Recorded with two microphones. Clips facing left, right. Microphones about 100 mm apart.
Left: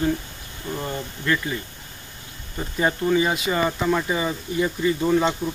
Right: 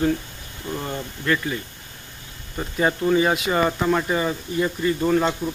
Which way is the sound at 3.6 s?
10° right (ahead or behind).